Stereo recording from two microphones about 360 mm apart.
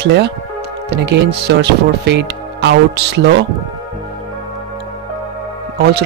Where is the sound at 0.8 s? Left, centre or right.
Right.